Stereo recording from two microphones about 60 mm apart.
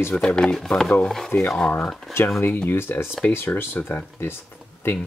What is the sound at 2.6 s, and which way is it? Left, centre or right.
Speech, left.